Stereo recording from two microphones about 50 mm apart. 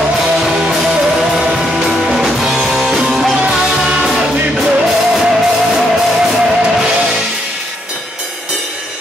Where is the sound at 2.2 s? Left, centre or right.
Centre.